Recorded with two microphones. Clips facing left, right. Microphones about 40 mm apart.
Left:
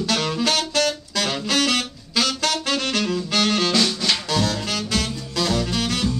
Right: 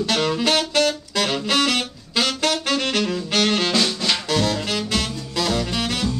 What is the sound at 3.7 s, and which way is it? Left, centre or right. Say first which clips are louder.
Music: even; centre.